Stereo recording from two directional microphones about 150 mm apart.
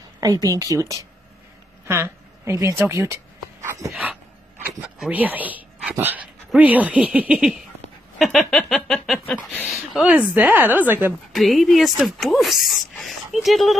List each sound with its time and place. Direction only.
0.2 s speech: 25° right (ahead or behind)
3.6 s dog: 20° right (ahead or behind)
3.9 s speech: 5° right (ahead or behind)
8.2 s a sound: centre (ahead or behind)
10.3 s a woman's voice: 10° right (ahead or behind)
11.3 s speech: centre (ahead or behind)